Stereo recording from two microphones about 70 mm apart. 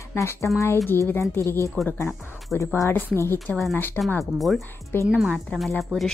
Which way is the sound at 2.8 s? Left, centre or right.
Left.